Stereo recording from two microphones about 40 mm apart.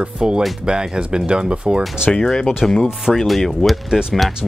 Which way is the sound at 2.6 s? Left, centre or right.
Centre.